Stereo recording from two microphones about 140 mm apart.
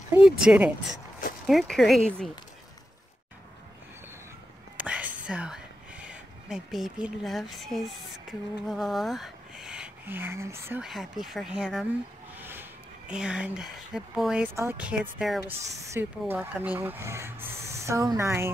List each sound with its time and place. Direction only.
0.1 s speech: 5° right (ahead or behind)
4.7 s whispering: 10° right (ahead or behind)
6.0 s speech: centre (ahead or behind); by 10.8 s 20° right (ahead or behind)
10.8 s speech: centre (ahead or behind)
12.4 s a sound: 15° right (ahead or behind)
13.1 s speech: 5° right (ahead or behind)
14.5 s speech: 15° right (ahead or behind)
15.8 s speech: 20° right (ahead or behind)